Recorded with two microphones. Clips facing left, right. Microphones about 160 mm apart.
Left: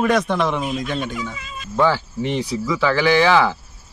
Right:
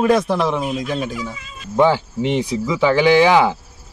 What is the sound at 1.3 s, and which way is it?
Cat, 90° left.